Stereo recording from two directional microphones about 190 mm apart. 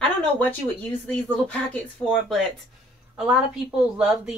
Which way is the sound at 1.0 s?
10° left (ahead or behind).